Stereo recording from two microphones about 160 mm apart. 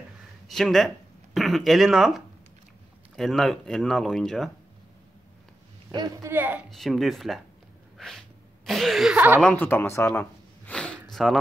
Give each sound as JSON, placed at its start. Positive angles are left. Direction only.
{"t": 0.5, "sound": "speech", "side_deg": 0}
{"t": 5.9, "sound": "speech", "side_deg": -25}
{"t": 6.3, "sound": "speech", "side_deg": -10}
{"t": 6.7, "sound": "speech", "side_deg": 0}
{"t": 8.0, "sound": "a sound", "side_deg": 0}
{"t": 8.6, "sound": "speech", "side_deg": 0}
{"t": 9.4, "sound": "speech", "side_deg": 10}